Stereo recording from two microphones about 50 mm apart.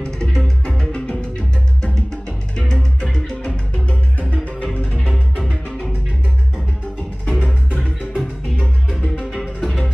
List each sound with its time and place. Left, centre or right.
0.0 s music: centre
2.5 s music: centre
4.2 s music: left
5.1 s music: centre
7.2 s music: centre
9.4 s music: centre